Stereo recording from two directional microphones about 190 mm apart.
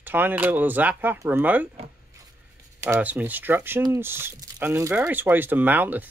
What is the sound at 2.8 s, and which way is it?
Speech, 10° right (ahead or behind).